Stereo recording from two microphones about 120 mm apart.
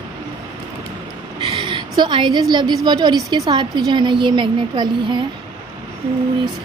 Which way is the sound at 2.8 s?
35° right (ahead or behind).